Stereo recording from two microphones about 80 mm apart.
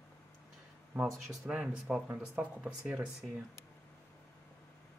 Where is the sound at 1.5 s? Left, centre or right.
Centre.